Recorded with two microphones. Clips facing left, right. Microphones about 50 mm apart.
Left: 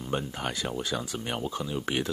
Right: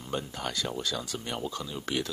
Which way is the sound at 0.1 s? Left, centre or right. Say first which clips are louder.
Left 2 dB; left.